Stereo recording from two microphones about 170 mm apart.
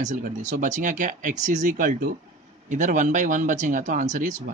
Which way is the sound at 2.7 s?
45° right (ahead or behind).